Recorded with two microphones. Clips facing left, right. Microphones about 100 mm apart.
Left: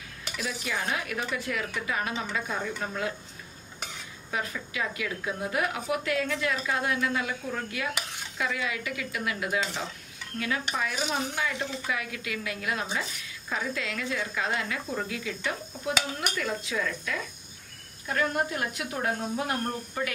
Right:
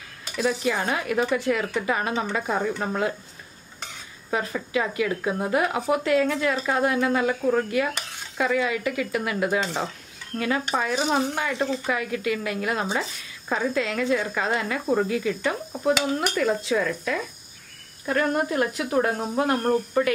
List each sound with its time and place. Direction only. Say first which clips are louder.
0.4 s speech: right 9 dB; 50° right (ahead or behind)
1.0 s a woman's voice: right 9 dB; 35° right (ahead or behind)
2.1 s speech: right 6 dB; 50° right (ahead or behind)
4.3 s a woman's voice: right 7 dB; 40° right (ahead or behind)